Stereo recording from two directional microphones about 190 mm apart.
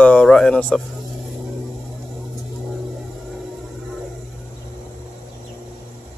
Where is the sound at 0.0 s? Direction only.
5° left (ahead or behind).